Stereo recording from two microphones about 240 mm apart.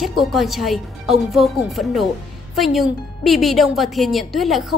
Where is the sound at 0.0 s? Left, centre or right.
Centre.